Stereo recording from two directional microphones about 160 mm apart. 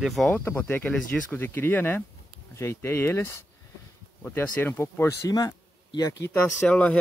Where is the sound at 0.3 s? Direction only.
15° left (ahead or behind).